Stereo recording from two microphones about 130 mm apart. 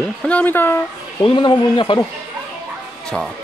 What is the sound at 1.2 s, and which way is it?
Speech, 40° left (ahead or behind).